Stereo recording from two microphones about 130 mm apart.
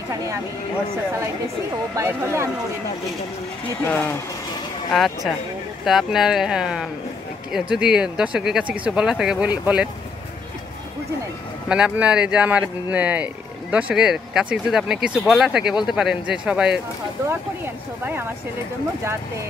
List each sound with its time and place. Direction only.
0.1 s speech: 25° right (ahead or behind)
2.0 s speech: 20° right (ahead or behind)
3.8 s speech: 15° left (ahead or behind)
4.9 s speech: centre (ahead or behind)
11.7 s speech: 10° right (ahead or behind)